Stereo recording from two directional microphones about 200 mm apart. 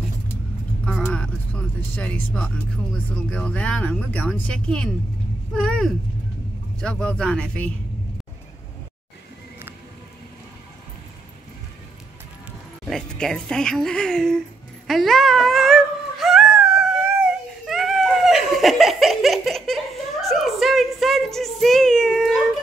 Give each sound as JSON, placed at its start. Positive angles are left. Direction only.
{"t": 1.0, "sound": "speech", "side_deg": 5}
{"t": 12.8, "sound": "speech", "side_deg": 0}
{"t": 14.9, "sound": "a sound", "side_deg": 0}